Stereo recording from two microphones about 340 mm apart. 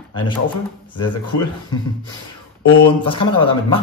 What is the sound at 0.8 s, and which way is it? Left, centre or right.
Speech, centre.